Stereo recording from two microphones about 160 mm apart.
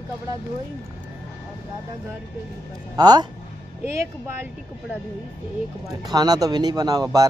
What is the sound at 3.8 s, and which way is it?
Speech, 15° right (ahead or behind).